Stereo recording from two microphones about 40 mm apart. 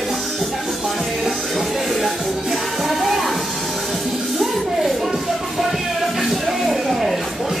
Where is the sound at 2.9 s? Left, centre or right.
Centre.